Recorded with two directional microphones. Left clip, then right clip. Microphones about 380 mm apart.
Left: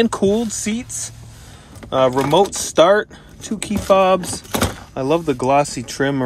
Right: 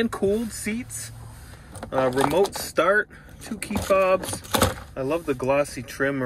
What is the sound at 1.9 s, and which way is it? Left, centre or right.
Speech, centre.